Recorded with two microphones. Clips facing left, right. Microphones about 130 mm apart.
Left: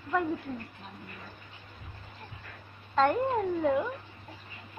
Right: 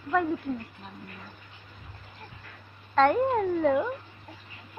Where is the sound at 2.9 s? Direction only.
10° left (ahead or behind).